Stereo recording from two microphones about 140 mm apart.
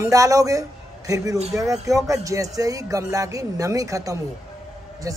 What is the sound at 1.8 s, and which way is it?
A man's voice, 25° right (ahead or behind).